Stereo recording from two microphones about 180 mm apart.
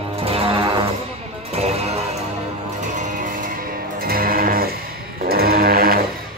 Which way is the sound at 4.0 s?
55° right (ahead or behind).